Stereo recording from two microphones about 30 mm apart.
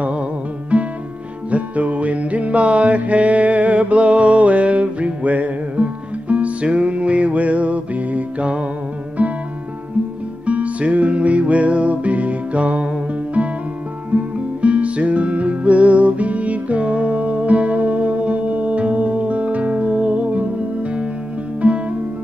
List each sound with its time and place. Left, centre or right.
0.7 s music: right
9.2 s music: right
10.4 s music: right
14.1 s music: right
21.5 s music: right